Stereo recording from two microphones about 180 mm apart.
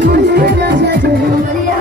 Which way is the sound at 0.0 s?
65° right (ahead or behind).